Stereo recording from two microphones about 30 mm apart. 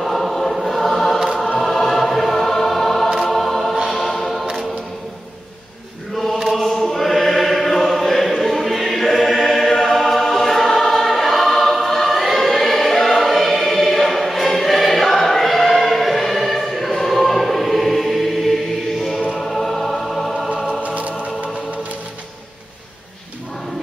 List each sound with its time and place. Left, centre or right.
0.0 s choir: centre
6.5 s choir: centre
18.9 s chant: centre
19.3 s choir: centre
20.8 s music: right